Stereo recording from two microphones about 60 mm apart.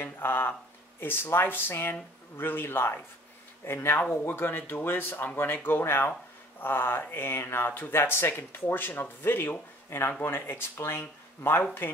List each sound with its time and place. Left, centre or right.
0.0 s speech: left